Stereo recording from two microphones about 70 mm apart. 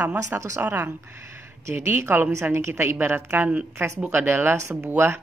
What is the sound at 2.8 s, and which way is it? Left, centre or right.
A woman's voice, right.